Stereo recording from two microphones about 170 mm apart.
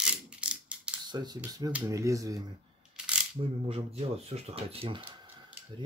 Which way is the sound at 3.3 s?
35° right (ahead or behind).